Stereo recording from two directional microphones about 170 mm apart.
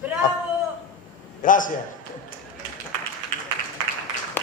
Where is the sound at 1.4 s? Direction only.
50° left (ahead or behind).